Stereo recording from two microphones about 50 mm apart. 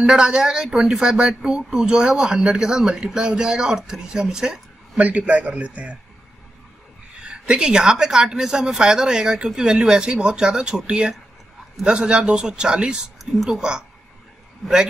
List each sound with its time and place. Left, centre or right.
0.0 s a woman's voice: centre
5.0 s a man's voice: right
7.2 s a woman's voice: centre
13.2 s speech: centre
13.5 s a woman's voice: centre